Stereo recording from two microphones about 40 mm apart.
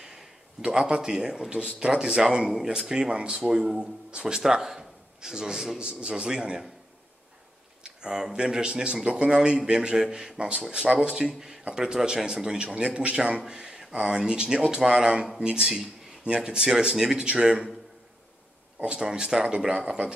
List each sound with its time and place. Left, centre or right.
0.0 s a sound: centre
0.7 s speech: centre
4.4 s a man's voice: centre
5.8 s speech: right
7.8 s speech: right
12.6 s speech: right
13.5 s speech: centre
18.9 s speech: centre